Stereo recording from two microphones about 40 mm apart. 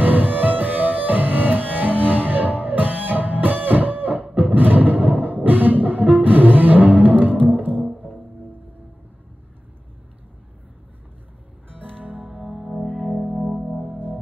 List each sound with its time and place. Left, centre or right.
0.0 s music: right
12.0 s music: right
12.4 s music: centre